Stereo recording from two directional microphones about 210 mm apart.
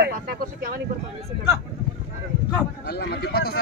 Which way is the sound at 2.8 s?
50° left (ahead or behind).